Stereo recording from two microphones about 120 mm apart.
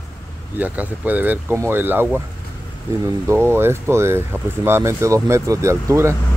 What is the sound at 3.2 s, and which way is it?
Speech, 20° right (ahead or behind).